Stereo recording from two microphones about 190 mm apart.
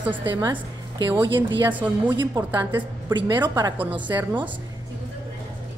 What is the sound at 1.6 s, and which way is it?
A woman's voice, 10° right (ahead or behind).